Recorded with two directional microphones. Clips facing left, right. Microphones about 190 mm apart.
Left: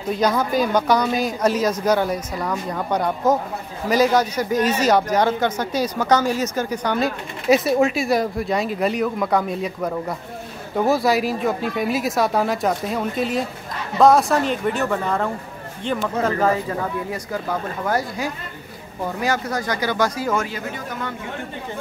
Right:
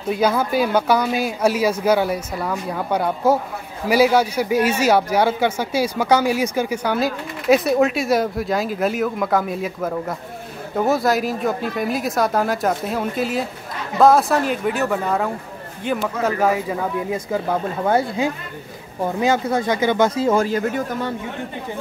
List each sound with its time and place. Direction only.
0.1 s speech: 5° right (ahead or behind)
17.1 s speech: 20° right (ahead or behind)
20.4 s speech: 45° right (ahead or behind)